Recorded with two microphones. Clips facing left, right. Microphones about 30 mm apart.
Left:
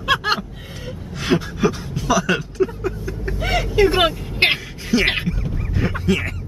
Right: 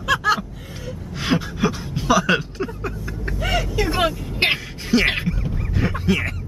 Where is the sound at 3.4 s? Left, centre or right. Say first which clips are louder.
Left 5 dB; left.